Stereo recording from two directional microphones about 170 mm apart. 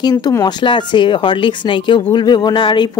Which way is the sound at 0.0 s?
20° left (ahead or behind).